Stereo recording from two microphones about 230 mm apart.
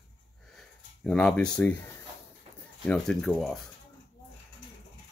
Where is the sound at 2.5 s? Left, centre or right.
Right.